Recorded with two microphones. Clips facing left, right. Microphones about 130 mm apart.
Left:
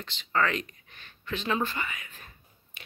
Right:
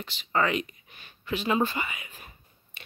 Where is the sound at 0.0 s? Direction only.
10° right (ahead or behind).